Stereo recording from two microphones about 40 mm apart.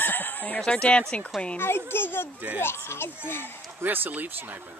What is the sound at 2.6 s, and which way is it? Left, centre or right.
Speech, left.